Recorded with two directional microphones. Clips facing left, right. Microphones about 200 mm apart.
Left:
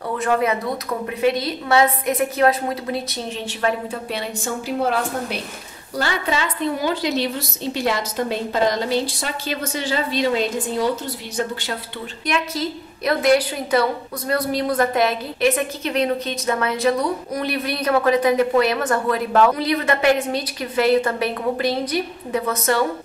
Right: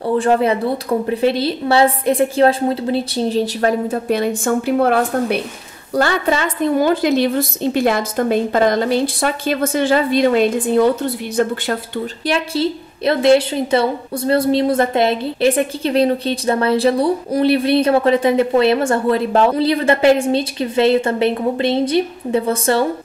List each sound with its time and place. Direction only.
0.0 s a woman's voice: 30° right (ahead or behind); by 11.8 s 55° right (ahead or behind)
12.3 s a woman's voice: 30° right (ahead or behind)